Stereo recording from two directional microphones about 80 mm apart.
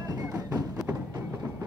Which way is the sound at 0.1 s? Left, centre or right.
Right.